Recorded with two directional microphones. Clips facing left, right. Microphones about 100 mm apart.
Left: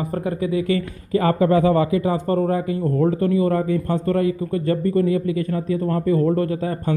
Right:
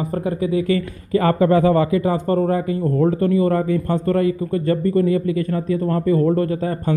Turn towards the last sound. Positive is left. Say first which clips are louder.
# right 2 dB
turn(degrees=-35)  # may be behind; listen again after turning